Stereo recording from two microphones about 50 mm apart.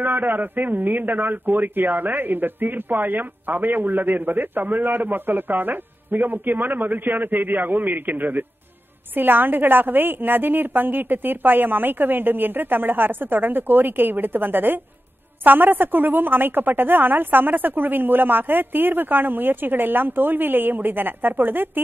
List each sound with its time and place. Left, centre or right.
0.0 s a man's voice: right